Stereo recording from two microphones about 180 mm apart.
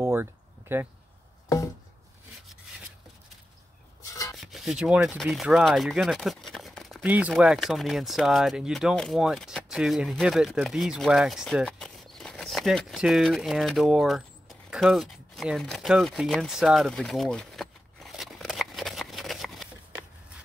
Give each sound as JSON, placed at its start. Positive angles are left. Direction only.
{"t": 0.0, "sound": "a sound", "side_deg": -15}
{"t": 4.0, "sound": "rub", "side_deg": 20}
{"t": 4.4, "sound": "speech", "side_deg": 0}